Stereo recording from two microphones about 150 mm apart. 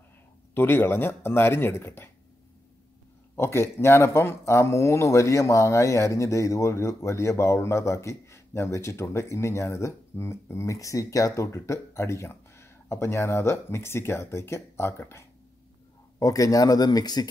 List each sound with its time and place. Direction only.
0.6 s speech: 15° left (ahead or behind)
3.3 s speech: 15° left (ahead or behind)